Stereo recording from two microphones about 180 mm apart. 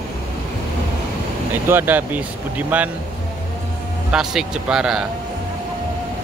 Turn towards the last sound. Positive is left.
turn(degrees=-5)  # may be behind; listen again after turning